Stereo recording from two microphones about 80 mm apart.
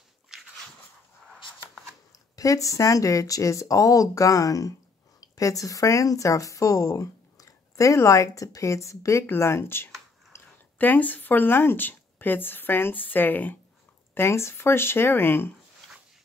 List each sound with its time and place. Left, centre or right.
2.3 s speech: left
10.3 s a sound: left
10.8 s speech: left